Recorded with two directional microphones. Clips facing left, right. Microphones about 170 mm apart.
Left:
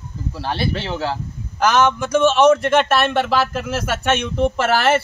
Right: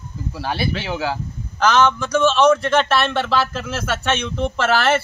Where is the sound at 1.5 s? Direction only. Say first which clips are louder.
Even; 15° left (ahead or behind).